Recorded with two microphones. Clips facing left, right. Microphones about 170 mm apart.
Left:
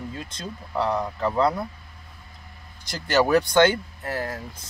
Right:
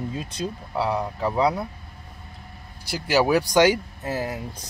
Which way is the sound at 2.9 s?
5° right (ahead or behind).